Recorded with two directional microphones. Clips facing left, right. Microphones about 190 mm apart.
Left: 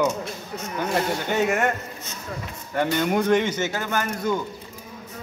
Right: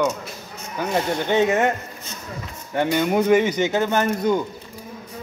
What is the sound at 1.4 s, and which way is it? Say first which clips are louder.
Speech: right 3 dB; 20° right (ahead or behind).